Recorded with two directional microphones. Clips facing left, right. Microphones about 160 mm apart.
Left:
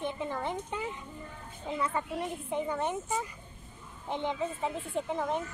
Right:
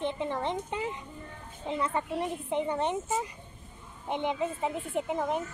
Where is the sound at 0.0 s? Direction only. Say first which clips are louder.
Right 3 dB; 25° right (ahead or behind).